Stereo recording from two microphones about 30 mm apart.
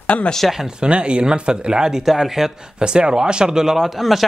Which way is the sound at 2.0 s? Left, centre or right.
Centre.